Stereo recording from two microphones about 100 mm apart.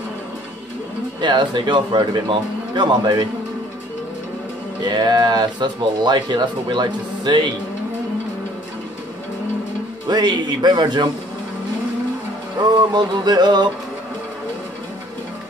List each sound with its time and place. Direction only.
1.2 s speech: 50° right (ahead or behind)
4.8 s speech: 45° right (ahead or behind)
10.0 s speech: 45° right (ahead or behind)
12.6 s speech: 45° right (ahead or behind)